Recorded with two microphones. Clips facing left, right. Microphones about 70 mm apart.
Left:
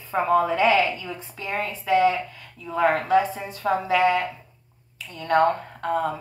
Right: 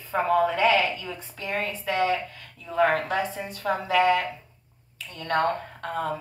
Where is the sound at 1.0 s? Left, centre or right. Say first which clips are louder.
Left 2 dB; left.